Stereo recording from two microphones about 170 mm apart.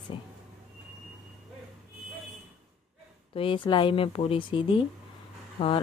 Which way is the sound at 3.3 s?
30° left (ahead or behind).